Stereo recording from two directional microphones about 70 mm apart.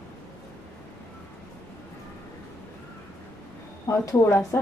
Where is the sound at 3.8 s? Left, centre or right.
Left.